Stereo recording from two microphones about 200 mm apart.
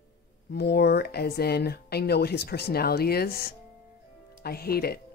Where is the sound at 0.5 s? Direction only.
55° left (ahead or behind).